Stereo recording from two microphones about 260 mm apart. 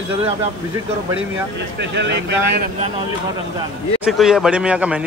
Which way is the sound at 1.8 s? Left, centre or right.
Right.